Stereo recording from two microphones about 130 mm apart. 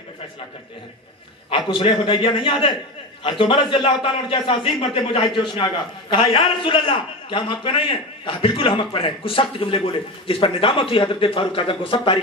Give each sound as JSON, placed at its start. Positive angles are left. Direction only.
{"t": 1.7, "sound": "a man's voice", "side_deg": 40}